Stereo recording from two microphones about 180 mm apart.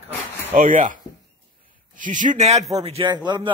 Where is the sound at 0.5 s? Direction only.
50° right (ahead or behind).